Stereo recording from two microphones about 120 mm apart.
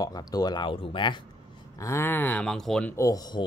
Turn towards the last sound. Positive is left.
turn(degrees=35)  # may be behind; listen again after turning